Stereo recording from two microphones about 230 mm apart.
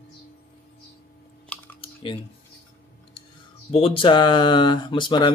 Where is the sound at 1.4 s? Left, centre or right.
Centre.